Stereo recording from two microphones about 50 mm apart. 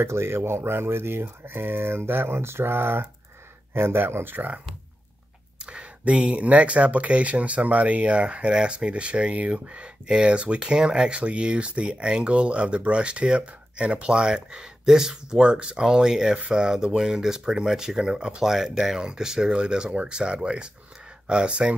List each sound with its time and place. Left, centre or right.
0.0 s speech: right
5.7 s speech: right